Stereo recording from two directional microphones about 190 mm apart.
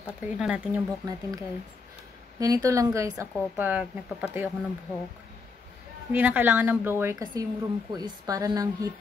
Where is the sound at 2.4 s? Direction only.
20° right (ahead or behind).